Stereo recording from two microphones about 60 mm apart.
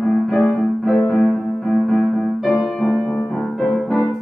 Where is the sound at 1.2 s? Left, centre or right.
Left.